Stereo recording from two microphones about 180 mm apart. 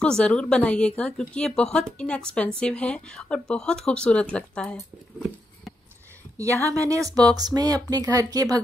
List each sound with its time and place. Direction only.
0.0 s a woman's voice: 5° left (ahead or behind)
6.7 s speech: 20° right (ahead or behind)